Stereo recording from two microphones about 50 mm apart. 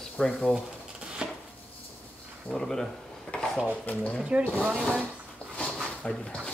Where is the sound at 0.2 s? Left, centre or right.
Centre.